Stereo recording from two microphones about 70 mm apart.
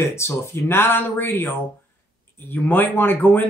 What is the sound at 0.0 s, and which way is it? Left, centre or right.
Speech, left.